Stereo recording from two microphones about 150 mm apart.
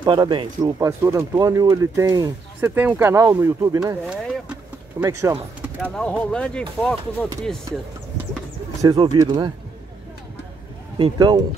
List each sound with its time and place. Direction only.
0.0 s speech: 30° right (ahead or behind)
2.7 s speech: 15° right (ahead or behind)
4.0 s speech: centre (ahead or behind)
5.0 s speech: 20° right (ahead or behind)
5.8 s speech: 5° left (ahead or behind)
8.8 s speech: 35° right (ahead or behind)
11.0 s speech: 30° right (ahead or behind)